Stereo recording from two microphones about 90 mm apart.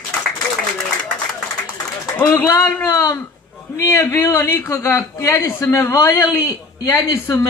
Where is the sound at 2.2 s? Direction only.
35° left (ahead or behind).